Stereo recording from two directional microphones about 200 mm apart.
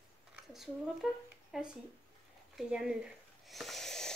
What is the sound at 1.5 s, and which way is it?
Speech, 5° right (ahead or behind).